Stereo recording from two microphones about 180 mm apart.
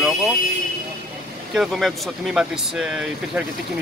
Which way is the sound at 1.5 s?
Centre (ahead or behind).